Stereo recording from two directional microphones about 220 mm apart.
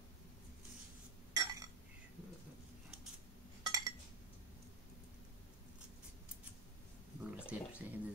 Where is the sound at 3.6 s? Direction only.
15° right (ahead or behind).